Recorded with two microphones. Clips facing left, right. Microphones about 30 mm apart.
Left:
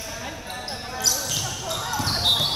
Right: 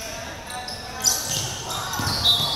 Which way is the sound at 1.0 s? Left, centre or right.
Centre.